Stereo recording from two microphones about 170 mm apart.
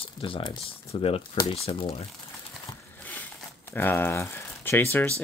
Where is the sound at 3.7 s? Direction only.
10° left (ahead or behind).